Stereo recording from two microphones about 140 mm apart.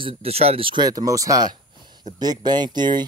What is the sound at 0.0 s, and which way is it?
Speech, 45° right (ahead or behind).